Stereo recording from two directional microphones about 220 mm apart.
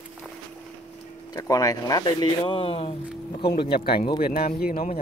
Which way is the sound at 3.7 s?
45° left (ahead or behind).